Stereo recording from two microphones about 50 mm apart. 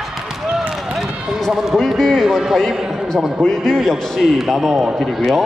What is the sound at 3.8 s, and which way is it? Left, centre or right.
A man's voice, centre.